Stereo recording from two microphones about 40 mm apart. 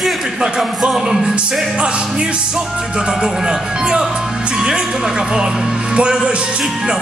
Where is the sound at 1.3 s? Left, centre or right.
Right.